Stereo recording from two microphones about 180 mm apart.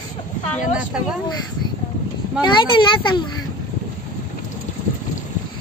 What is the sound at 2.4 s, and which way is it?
A child's voice, 25° left (ahead or behind).